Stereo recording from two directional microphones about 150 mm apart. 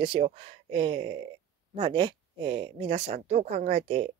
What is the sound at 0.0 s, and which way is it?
Speech, 35° right (ahead or behind).